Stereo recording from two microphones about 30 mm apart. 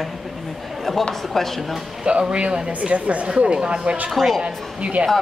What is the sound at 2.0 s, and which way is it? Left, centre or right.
Speech, right.